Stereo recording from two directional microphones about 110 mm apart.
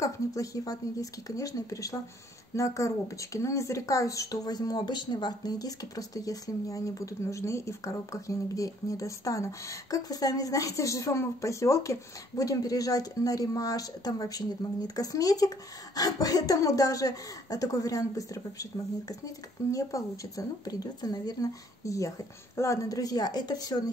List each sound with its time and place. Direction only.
0.0 s speech: 30° left (ahead or behind)